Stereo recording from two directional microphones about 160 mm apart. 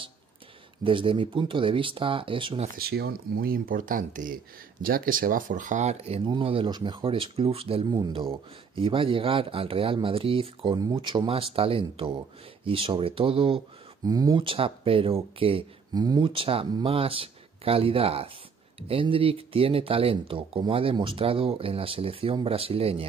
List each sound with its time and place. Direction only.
0.8 s speech: 35° right (ahead or behind)
2.8 s speech: 80° right; by 15.6 s 35° right (ahead or behind)
15.9 s speech: 25° right (ahead or behind)